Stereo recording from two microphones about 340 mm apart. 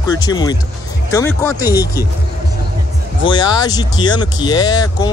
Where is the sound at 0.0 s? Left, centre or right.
Centre.